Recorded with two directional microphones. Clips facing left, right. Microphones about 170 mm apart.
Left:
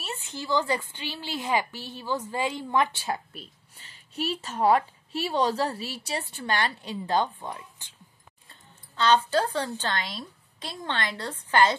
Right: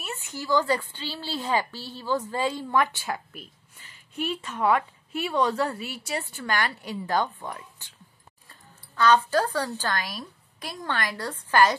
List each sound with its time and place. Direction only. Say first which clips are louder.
0.0 s a woman's voice: right 1 dB; 25° left (ahead or behind)
8.5 s a sound: right 2 dB; 25° left (ahead or behind)
9.8 s a woman's voice: right 1 dB; 25° left (ahead or behind)